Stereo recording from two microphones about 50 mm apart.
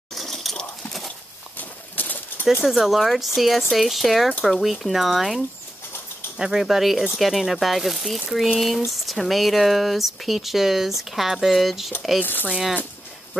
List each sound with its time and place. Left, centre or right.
0.1 s a sound: centre
1.6 s bird: left
2.6 s speech: centre
12.2 s speech: left